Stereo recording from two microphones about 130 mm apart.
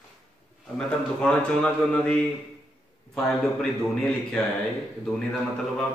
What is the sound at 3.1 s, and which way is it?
Speech, 5° left (ahead or behind).